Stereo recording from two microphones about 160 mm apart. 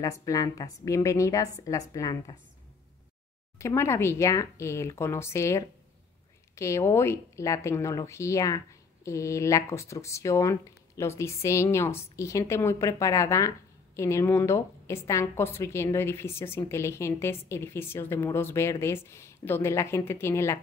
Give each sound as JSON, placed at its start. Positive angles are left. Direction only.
{"t": 0.0, "sound": "speech", "side_deg": 20}
{"t": 3.5, "sound": "a woman's voice", "side_deg": 15}